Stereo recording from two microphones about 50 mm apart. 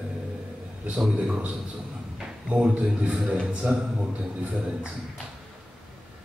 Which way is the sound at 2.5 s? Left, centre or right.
Right.